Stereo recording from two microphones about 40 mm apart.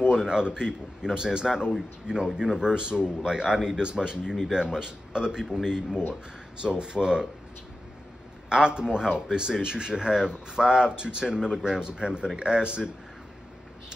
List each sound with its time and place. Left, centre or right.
0.1 s speech: centre
8.5 s speech: right